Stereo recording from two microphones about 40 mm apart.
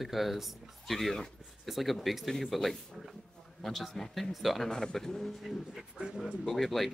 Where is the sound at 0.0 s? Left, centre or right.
Centre.